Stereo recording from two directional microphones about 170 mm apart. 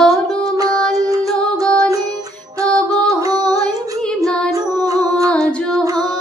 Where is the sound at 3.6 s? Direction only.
5° left (ahead or behind).